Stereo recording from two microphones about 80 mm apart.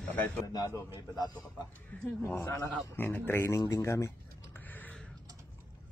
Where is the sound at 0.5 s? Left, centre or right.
Left.